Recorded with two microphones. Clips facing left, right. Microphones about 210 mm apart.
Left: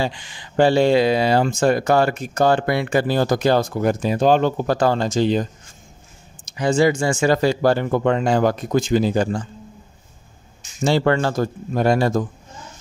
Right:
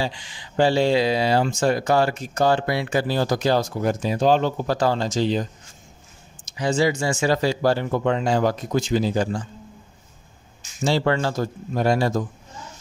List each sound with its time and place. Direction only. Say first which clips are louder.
0.0 s speech: left 3 dB; 55° left (ahead or behind)
6.4 s speech: left 4 dB; 55° left (ahead or behind)
10.8 s speech: left 3 dB; 55° left (ahead or behind)